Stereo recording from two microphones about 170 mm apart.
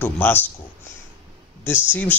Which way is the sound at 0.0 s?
10° left (ahead or behind).